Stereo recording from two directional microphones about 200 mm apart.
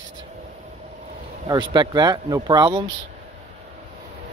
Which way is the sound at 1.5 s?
20° right (ahead or behind).